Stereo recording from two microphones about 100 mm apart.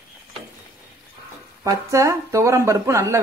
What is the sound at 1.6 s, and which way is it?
Speech, 30° right (ahead or behind).